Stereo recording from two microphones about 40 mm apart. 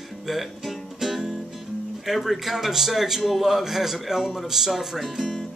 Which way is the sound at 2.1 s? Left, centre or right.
Centre.